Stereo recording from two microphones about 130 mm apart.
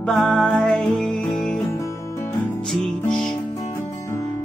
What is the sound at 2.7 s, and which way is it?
Music, 5° left (ahead or behind).